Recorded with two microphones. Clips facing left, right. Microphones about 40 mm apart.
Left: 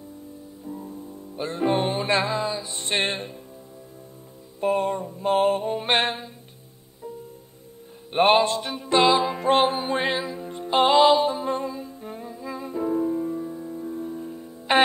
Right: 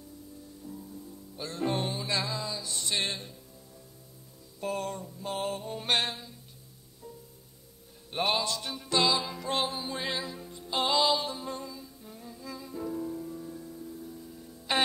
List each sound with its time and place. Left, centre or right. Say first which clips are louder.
0.7 s music: left 8 dB; left
4.6 s music: left 10 dB; left
8.1 s music: left 11 dB; left
12.3 s music: left 7 dB; left
14.7 s music: left 9 dB; left